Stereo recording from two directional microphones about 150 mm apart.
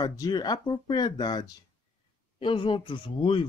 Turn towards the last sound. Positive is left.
turn(degrees=35)  # may be behind; listen again after turning